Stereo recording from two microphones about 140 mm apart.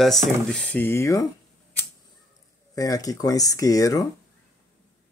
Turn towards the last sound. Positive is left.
turn(degrees=25)  # may be behind; listen again after turning